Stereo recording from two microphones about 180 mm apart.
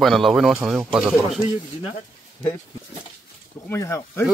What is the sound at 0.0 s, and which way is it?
Speech, centre (ahead or behind).